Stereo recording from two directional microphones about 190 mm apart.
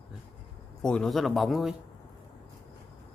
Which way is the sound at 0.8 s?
5° left (ahead or behind).